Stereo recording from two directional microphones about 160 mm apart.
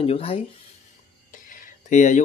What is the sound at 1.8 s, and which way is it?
Speech, 50° left (ahead or behind).